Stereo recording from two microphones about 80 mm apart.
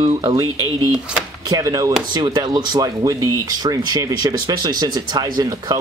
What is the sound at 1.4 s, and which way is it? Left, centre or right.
Speech, right.